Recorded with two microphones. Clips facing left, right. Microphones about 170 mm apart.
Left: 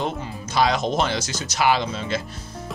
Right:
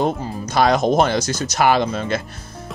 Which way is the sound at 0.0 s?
45° right (ahead or behind).